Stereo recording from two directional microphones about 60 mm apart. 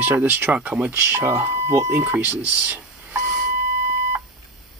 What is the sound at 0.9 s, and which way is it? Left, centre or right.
Speech, right.